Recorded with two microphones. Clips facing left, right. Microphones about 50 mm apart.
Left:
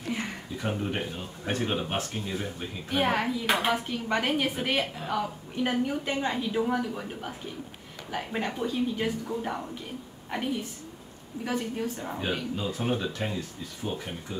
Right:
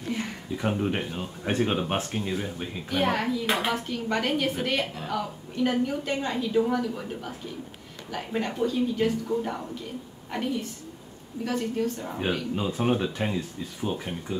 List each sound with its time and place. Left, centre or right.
0.1 s a sound: centre
0.6 s speech: centre
2.3 s speech: centre
2.9 s speech: centre
8.2 s a woman's voice: centre
10.3 s speech: centre
12.5 s speech: centre